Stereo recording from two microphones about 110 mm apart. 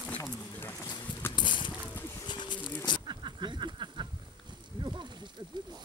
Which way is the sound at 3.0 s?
45° right (ahead or behind).